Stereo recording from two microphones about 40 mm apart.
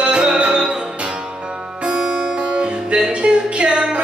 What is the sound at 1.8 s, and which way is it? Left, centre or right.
Music, right.